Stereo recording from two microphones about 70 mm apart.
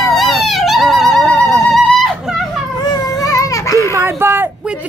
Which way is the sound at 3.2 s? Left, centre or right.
Left.